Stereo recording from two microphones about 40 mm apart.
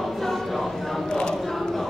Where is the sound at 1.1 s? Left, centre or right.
Centre.